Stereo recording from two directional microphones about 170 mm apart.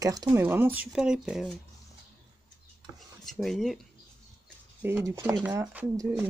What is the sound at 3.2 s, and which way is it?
Speech, centre (ahead or behind).